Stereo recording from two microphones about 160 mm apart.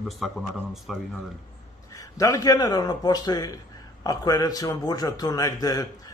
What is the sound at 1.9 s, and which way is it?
A man's voice, 20° left (ahead or behind).